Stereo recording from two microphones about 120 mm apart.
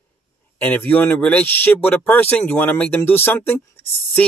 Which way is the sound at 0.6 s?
15° left (ahead or behind).